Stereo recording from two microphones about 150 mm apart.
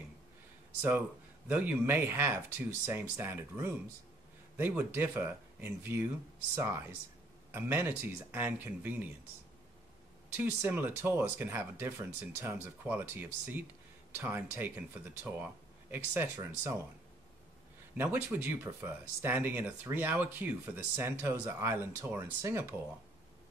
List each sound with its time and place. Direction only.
0.7 s speech: 10° right (ahead or behind)
10.3 s speech: 15° right (ahead or behind)
17.9 s speech: 15° right (ahead or behind)